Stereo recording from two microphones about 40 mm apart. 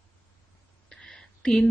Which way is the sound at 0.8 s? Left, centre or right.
Centre.